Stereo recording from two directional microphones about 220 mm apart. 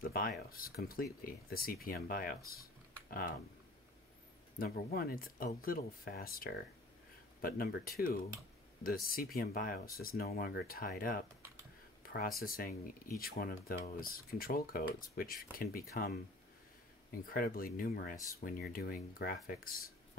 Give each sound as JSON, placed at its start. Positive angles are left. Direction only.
{"t": 0.0, "sound": "speech", "side_deg": 40}
{"t": 4.6, "sound": "speech", "side_deg": 45}
{"t": 12.0, "sound": "a sound", "side_deg": 40}
{"t": 12.4, "sound": "speech", "side_deg": 40}
{"t": 17.3, "sound": "speech", "side_deg": 40}